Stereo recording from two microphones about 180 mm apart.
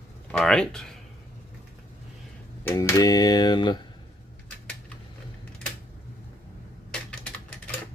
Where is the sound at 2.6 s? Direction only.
15° left (ahead or behind).